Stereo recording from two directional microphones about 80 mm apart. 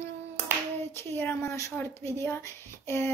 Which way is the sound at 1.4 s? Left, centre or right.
Left.